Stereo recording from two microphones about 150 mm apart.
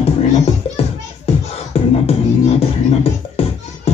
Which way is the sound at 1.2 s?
40° left (ahead or behind).